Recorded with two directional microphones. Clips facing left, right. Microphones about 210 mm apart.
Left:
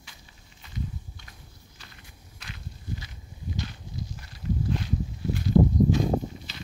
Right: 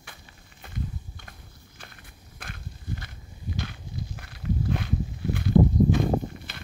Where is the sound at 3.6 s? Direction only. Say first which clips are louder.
Right 1 dB; 55° right (ahead or behind).